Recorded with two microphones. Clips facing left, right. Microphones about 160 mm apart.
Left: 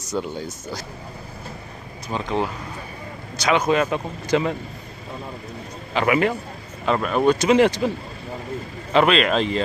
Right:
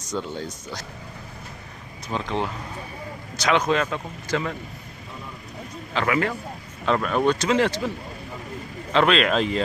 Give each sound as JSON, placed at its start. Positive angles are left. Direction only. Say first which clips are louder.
{"t": 0.1, "sound": "speech", "louder": "left 2 dB", "side_deg": 10}
{"t": 2.0, "sound": "speech", "louder": "left 2 dB", "side_deg": 0}
{"t": 5.9, "sound": "speech", "louder": "left 4 dB", "side_deg": 15}
{"t": 6.9, "sound": "speech", "louder": "left 2 dB", "side_deg": 5}
{"t": 8.9, "sound": "speech", "louder": "left 2 dB", "side_deg": 5}